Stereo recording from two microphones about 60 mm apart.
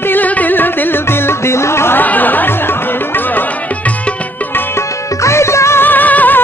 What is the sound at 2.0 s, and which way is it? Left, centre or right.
Music, left.